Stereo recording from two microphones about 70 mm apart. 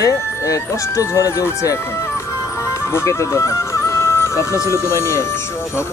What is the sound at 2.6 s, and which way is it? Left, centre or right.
Speech, left.